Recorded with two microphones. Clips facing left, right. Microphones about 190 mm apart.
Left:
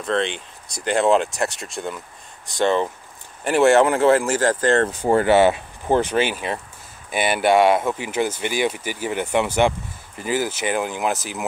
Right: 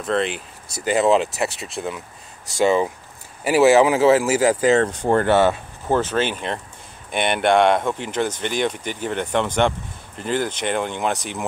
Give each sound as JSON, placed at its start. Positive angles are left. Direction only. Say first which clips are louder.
{"t": 0.0, "sound": "speech", "louder": "right 1 dB", "side_deg": -5}
{"t": 4.8, "sound": "speech", "louder": "left 1 dB", "side_deg": 5}